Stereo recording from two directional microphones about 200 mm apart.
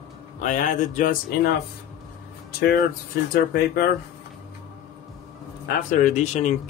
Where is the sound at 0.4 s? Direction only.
40° left (ahead or behind).